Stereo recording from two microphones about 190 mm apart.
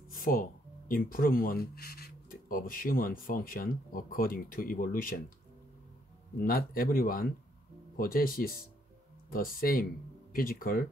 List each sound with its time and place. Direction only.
0.1 s speech: 45° left (ahead or behind)
6.4 s speech: 50° left (ahead or behind)